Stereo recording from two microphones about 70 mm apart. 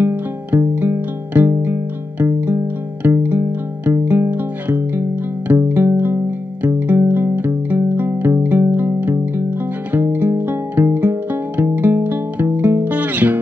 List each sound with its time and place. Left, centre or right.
0.0 s music: right